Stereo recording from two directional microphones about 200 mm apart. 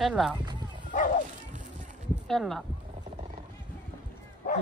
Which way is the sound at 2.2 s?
Centre (ahead or behind).